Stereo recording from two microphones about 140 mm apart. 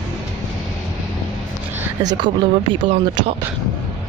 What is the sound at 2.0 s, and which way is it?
Speech, 35° right (ahead or behind).